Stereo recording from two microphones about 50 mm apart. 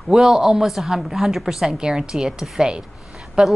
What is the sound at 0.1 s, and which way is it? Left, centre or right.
A woman's voice, centre.